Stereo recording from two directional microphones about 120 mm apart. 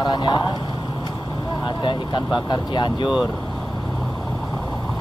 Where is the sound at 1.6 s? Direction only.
45° left (ahead or behind).